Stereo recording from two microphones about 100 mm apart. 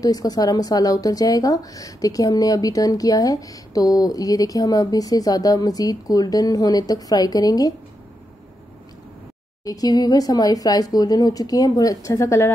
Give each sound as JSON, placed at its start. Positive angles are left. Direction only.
{"t": 0.0, "sound": "a woman's voice", "side_deg": 40}
{"t": 9.7, "sound": "a woman's voice", "side_deg": 40}